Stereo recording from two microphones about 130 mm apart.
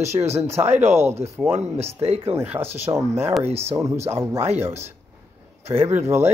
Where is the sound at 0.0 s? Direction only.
60° right (ahead or behind).